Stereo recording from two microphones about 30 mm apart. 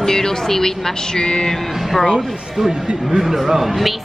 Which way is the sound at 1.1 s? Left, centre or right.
Left.